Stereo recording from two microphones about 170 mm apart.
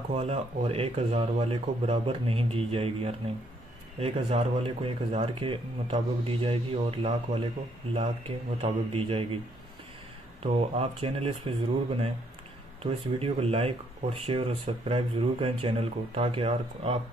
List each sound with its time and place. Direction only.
0.1 s speech: 35° right (ahead or behind)
8.5 s speech: 30° right (ahead or behind)
10.4 s speech: 35° right (ahead or behind)